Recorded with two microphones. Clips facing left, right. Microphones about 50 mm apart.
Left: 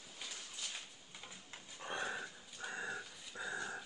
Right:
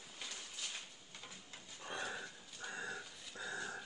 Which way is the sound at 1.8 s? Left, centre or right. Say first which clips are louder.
Left 3 dB; left.